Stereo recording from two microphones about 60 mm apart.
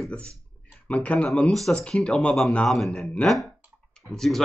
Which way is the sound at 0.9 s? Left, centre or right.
Left.